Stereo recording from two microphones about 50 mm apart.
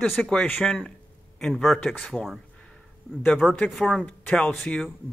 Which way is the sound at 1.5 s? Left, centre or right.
Centre.